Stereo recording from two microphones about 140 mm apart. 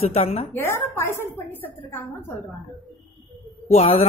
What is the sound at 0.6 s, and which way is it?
A woman's voice, 15° left (ahead or behind).